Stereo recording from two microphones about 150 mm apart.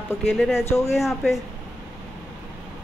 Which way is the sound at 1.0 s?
Centre (ahead or behind).